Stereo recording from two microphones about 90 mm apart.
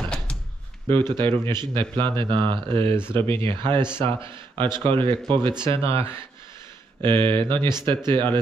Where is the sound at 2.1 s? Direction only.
65° right (ahead or behind).